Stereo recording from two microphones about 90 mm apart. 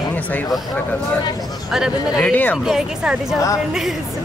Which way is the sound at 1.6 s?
5° right (ahead or behind).